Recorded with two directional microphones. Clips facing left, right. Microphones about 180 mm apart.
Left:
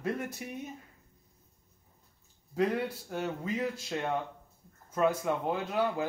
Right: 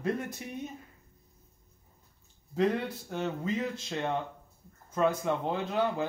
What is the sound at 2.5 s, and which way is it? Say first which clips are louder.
A man's voice: right 1 dB; 10° left (ahead or behind).